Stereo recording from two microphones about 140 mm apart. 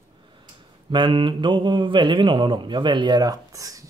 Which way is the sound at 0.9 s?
35° right (ahead or behind).